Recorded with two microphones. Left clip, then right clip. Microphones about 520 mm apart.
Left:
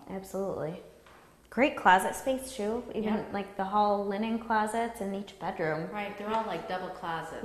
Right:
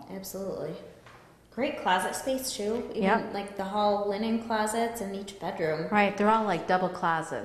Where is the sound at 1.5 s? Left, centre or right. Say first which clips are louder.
Left 4 dB; left.